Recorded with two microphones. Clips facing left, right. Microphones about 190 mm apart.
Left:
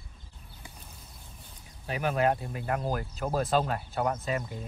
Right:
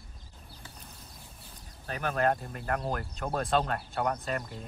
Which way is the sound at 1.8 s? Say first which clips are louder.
Left 2 dB; 10° left (ahead or behind).